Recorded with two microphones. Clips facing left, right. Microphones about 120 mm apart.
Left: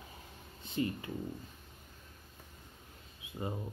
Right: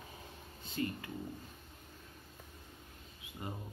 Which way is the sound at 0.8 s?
25° left (ahead or behind).